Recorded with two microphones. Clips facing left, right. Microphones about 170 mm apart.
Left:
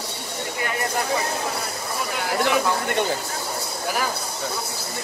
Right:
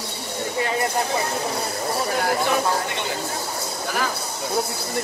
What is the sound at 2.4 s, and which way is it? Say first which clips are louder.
Speech: even; 50° left (ahead or behind).